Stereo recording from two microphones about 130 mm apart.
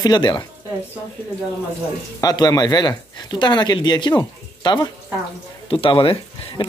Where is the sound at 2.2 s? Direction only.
30° left (ahead or behind).